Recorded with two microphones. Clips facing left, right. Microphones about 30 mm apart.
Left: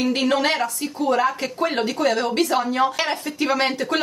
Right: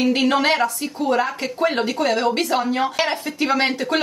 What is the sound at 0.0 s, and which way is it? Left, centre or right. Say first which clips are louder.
Speech: right 2 dB; centre.